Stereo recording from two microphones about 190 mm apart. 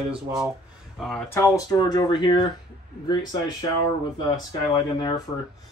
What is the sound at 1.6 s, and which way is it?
Speech, 20° left (ahead or behind).